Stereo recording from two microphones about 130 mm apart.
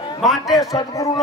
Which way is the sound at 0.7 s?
25° left (ahead or behind).